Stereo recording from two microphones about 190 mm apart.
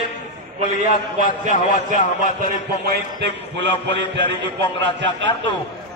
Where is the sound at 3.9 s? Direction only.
70° right (ahead or behind).